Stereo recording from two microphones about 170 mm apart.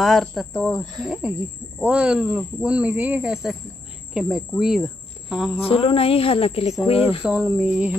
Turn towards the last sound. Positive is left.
turn(degrees=-5)  # may be behind; listen again after turning